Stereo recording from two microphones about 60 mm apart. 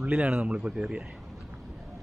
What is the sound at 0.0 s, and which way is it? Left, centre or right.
Speech, right.